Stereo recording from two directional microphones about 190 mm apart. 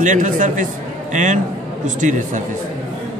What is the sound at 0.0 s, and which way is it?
A man's voice, 40° right (ahead or behind).